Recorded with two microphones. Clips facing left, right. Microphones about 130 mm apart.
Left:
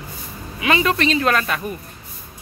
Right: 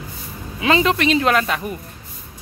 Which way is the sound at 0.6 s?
25° right (ahead or behind).